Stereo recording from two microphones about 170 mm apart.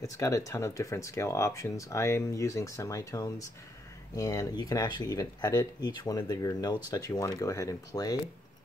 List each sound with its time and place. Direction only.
0.0 s speech: 20° left (ahead or behind)